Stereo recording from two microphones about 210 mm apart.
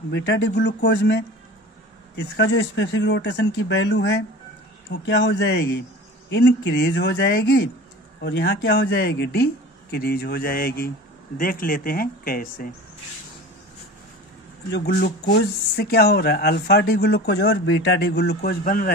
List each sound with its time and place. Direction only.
0.1 s speech: 55° left (ahead or behind)
2.1 s speech: 60° left (ahead or behind)
14.7 s speech: 50° left (ahead or behind)